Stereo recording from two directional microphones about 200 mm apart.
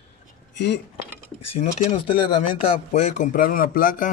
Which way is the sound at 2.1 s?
25° left (ahead or behind).